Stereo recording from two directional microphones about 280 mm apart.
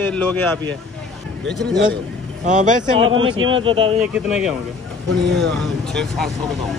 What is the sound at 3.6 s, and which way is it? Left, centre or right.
Speech, centre.